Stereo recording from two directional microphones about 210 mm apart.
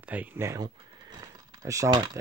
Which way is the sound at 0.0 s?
5° right (ahead or behind).